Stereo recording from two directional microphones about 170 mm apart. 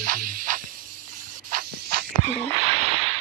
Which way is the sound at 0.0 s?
55° right (ahead or behind).